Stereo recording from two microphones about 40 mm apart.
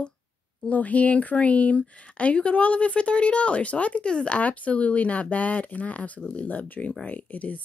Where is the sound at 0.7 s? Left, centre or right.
Left.